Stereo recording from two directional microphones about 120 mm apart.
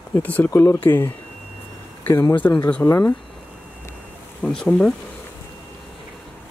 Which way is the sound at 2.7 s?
20° left (ahead or behind).